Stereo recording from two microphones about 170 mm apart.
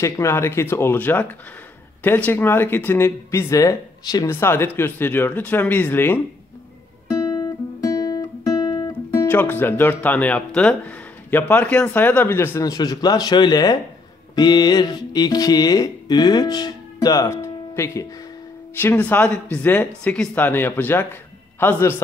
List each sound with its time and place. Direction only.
0.0 s speech: 15° left (ahead or behind)
7.1 s guitar: 20° left (ahead or behind)
12.5 s speech: 20° left (ahead or behind)